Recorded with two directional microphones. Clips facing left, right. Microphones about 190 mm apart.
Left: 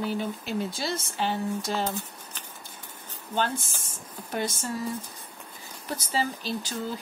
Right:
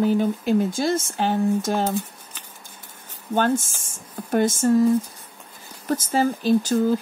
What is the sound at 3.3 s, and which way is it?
Speech, 50° right (ahead or behind).